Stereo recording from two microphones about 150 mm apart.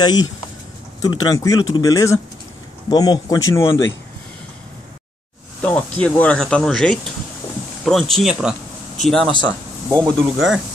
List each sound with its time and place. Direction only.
0.0 s speech: 30° left (ahead or behind)
5.6 s speech: 10° left (ahead or behind)